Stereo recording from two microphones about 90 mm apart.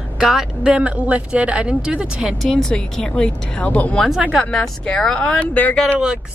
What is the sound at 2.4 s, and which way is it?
A woman's voice, 5° left (ahead or behind).